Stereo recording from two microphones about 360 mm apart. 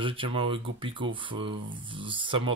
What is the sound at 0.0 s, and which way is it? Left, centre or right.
Speech, centre.